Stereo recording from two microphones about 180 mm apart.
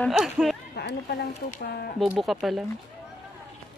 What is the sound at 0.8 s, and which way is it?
Speech, 65° left (ahead or behind).